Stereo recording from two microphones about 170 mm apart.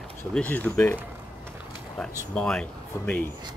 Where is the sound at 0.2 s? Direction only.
10° left (ahead or behind).